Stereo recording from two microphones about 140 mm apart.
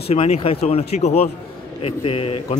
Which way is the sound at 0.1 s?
45° left (ahead or behind).